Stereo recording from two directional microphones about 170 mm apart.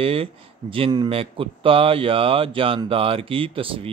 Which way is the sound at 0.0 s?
35° right (ahead or behind).